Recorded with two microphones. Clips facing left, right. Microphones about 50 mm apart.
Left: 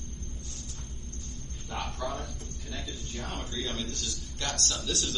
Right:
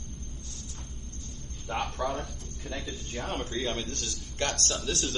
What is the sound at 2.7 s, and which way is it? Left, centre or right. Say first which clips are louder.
A man's voice: right 3 dB; right.